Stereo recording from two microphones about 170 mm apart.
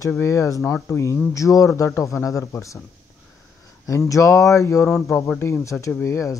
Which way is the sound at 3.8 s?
20° left (ahead or behind).